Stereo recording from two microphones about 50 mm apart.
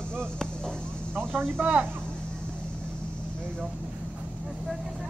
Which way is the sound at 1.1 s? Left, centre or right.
Right.